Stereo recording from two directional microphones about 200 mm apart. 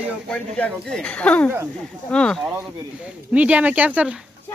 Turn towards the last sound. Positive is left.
turn(degrees=-5)  # may be behind; listen again after turning